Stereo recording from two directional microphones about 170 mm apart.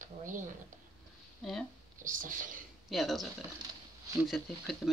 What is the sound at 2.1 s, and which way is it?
Speech, 50° right (ahead or behind).